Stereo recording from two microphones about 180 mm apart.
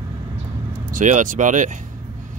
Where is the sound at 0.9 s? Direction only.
45° right (ahead or behind).